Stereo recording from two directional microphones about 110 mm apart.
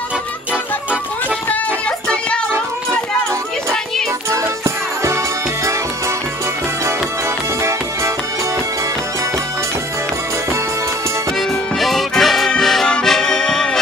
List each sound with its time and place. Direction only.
4.3 s music: 25° right (ahead or behind)
11.8 s accordion: centre (ahead or behind)